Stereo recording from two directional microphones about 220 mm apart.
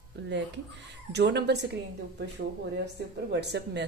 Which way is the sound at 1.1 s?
50° right (ahead or behind).